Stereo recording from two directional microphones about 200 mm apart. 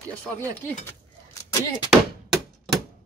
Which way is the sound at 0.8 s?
15° left (ahead or behind).